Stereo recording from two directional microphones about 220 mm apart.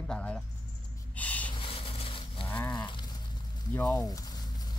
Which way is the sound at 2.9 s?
20° left (ahead or behind).